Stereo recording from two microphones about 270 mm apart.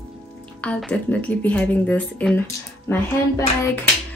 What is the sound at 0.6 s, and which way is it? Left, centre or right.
A woman's voice, centre.